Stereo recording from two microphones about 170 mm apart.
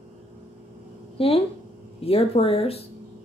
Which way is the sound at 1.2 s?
35° left (ahead or behind).